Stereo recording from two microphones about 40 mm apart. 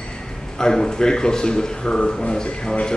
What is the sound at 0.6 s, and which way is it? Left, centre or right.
Speech, centre.